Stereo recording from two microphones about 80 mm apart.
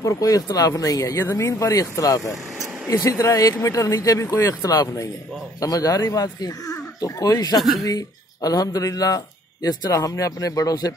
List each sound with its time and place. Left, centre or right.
0.0 s a man's voice: left